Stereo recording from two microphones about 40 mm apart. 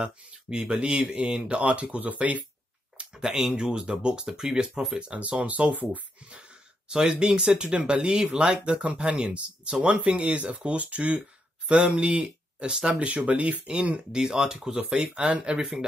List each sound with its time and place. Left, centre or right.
0.0 s speech: right
3.1 s speech: centre
5.2 s speech: right
6.9 s speech: right
13.9 s speech: centre
15.1 s speech: right